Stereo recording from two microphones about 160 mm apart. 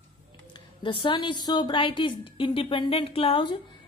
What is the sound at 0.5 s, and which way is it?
A woman's voice, 30° left (ahead or behind).